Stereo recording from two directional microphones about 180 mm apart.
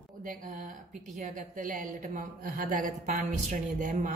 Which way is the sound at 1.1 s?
50° right (ahead or behind).